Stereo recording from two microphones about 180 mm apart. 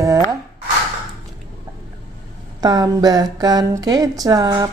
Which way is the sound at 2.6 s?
20° right (ahead or behind).